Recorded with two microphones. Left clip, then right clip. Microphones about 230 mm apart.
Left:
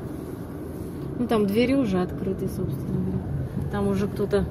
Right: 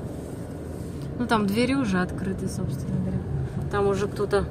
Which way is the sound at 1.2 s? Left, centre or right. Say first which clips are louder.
Left 1 dB; centre.